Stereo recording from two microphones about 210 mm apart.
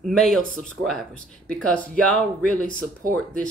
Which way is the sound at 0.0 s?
Centre (ahead or behind).